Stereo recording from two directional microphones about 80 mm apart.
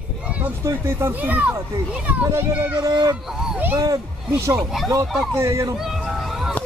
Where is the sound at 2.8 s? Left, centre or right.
Right.